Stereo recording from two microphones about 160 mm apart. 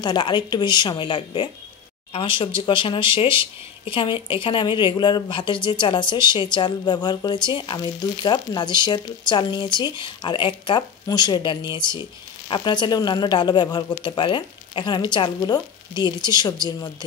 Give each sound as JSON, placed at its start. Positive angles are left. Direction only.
{"t": 0.0, "sound": "speech", "side_deg": 30}